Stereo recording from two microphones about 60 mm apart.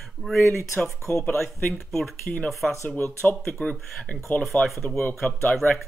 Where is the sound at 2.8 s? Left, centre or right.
Left.